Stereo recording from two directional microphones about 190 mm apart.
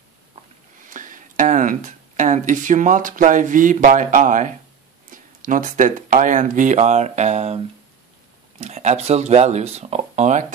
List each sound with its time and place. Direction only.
0.8 s speech: 45° right (ahead or behind)